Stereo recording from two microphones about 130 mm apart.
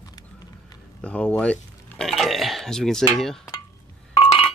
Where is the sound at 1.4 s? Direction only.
5° left (ahead or behind).